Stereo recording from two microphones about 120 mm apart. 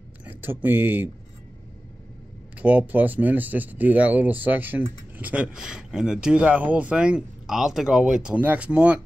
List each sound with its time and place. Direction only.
0.2 s speech: 15° right (ahead or behind)
2.5 s speech: 10° right (ahead or behind)